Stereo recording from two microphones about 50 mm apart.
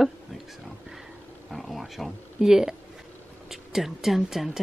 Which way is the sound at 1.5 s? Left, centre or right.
Centre.